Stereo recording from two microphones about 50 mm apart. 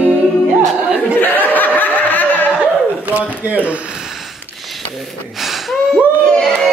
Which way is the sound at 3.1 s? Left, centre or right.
Right.